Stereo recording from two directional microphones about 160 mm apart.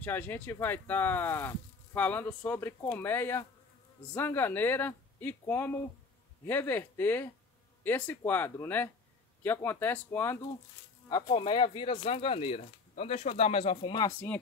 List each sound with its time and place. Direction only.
0.0 s speech: 10° left (ahead or behind)
11.1 s speech: 25° left (ahead or behind)